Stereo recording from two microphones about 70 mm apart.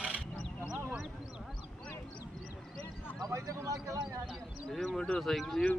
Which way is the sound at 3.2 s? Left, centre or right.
Right.